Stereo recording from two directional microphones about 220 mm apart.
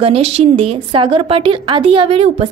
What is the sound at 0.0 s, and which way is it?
A woman's voice, 30° right (ahead or behind).